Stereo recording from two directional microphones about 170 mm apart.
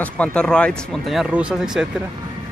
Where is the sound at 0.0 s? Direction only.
5° left (ahead or behind).